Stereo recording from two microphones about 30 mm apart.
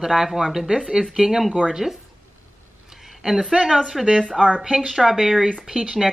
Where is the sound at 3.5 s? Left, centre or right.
Centre.